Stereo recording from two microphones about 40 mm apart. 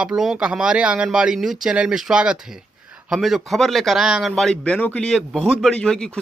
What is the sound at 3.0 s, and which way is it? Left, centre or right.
Speech, centre.